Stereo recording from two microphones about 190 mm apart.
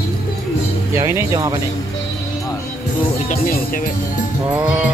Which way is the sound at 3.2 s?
45° left (ahead or behind).